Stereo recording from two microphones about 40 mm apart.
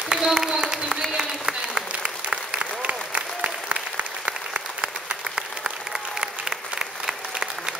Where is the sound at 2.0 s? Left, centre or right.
Right.